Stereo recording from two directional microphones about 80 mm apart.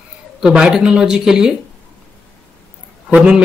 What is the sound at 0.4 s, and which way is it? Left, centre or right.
Speech, centre.